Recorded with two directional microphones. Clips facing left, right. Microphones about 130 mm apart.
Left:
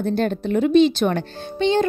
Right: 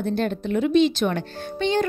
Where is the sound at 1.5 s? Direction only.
25° left (ahead or behind).